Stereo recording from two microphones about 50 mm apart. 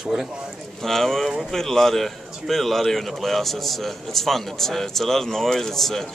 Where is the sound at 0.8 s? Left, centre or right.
Centre.